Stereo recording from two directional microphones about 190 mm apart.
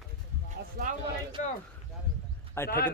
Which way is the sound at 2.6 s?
50° left (ahead or behind).